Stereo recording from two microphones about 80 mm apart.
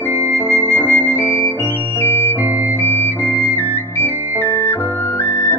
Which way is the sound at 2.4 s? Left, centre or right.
Right.